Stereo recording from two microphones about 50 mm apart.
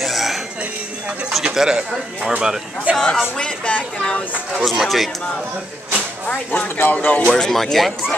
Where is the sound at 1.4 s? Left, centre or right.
Centre.